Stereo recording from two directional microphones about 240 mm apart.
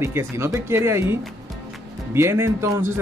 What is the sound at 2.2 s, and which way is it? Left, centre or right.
Speech, centre.